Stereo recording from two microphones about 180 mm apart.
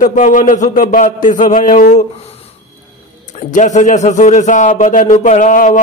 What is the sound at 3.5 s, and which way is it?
A man's voice, 40° left (ahead or behind).